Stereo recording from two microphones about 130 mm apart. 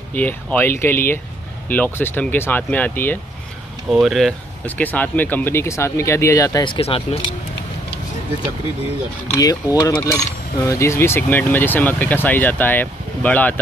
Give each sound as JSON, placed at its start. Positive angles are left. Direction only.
{"t": 0.1, "sound": "speech", "side_deg": 15}
{"t": 3.9, "sound": "speech", "side_deg": 0}
{"t": 4.6, "sound": "speech", "side_deg": 10}
{"t": 6.6, "sound": "speech", "side_deg": 45}
{"t": 9.3, "sound": "speech", "side_deg": 25}